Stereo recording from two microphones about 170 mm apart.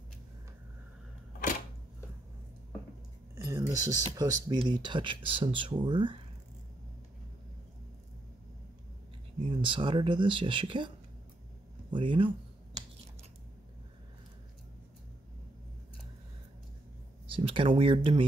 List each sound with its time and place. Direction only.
3.3 s speech: 20° right (ahead or behind)
9.6 s speech: 30° right (ahead or behind)
11.9 s speech: 30° right (ahead or behind)
17.3 s speech: 30° right (ahead or behind)